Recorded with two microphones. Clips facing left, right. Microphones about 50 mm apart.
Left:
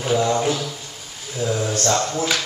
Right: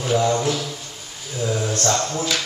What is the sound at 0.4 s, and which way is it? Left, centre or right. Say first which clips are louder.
Speech: left 1 dB; centre.